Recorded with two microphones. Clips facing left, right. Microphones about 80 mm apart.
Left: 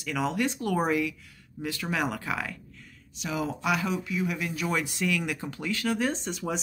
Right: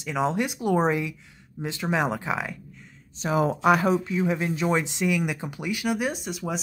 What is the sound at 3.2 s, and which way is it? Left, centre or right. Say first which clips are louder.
Speech: right 7 dB; right.